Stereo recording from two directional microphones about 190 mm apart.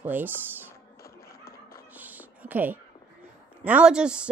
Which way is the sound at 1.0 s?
55° left (ahead or behind).